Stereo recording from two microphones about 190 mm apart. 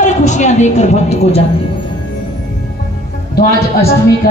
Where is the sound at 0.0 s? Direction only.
40° left (ahead or behind).